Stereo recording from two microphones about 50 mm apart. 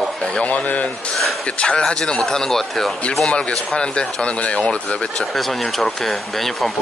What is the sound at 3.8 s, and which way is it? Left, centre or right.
Speech, centre.